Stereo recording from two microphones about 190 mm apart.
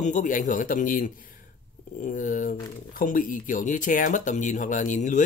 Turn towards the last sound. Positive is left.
turn(degrees=40)  # may be behind; listen again after turning